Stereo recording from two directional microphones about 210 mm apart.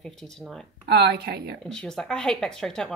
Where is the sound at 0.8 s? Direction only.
50° right (ahead or behind).